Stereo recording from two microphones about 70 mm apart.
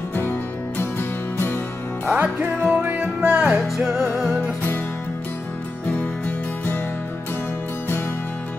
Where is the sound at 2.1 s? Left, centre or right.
Right.